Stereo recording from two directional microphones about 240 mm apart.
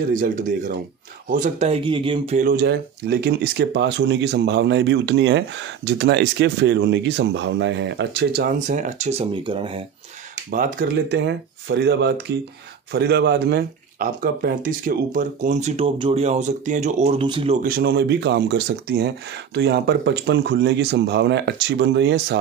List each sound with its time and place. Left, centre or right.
0.1 s speech: right
10.5 s speech: right